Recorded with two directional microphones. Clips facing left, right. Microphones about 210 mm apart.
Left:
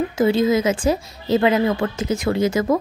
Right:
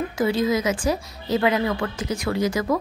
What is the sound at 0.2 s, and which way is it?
A woman's voice, 25° left (ahead or behind).